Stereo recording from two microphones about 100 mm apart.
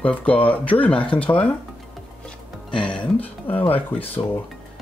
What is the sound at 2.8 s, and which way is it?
Speech, 10° left (ahead or behind).